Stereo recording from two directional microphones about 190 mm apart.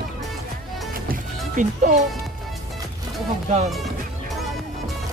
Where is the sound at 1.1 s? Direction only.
40° right (ahead or behind).